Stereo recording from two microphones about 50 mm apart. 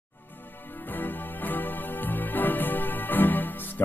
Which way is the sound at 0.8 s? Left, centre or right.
Left.